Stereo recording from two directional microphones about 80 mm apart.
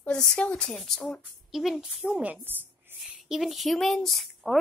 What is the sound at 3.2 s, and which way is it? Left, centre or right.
A woman's voice, centre.